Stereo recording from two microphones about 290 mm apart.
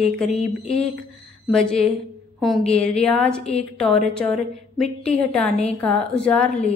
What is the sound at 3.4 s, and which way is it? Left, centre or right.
Speech, left.